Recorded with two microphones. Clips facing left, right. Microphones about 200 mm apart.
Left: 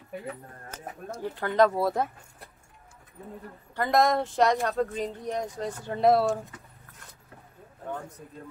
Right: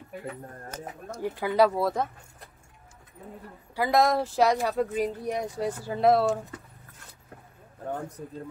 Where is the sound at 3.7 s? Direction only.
5° right (ahead or behind).